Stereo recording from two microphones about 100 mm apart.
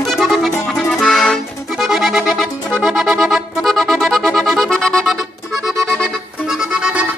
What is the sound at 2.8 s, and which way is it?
Music, centre (ahead or behind).